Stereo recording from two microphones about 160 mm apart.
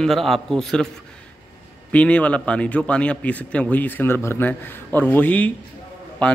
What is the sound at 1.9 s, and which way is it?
Speech, 10° left (ahead or behind).